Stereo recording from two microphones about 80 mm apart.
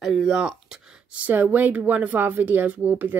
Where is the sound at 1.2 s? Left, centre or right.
Right.